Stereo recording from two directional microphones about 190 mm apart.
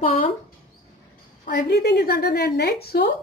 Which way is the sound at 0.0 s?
30° left (ahead or behind).